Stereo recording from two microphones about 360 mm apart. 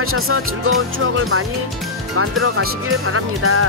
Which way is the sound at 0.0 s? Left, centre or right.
Right.